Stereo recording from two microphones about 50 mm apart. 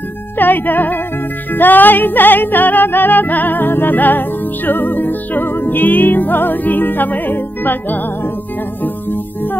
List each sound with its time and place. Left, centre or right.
0.4 s music: left